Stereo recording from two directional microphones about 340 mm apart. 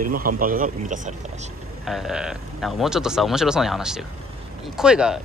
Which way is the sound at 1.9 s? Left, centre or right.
Centre.